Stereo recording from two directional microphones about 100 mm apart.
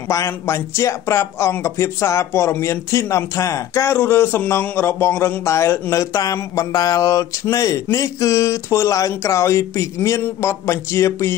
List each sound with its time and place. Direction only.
0.3 s speech: 25° left (ahead or behind)